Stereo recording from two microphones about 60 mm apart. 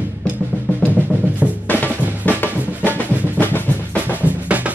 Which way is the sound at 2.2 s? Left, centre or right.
Left.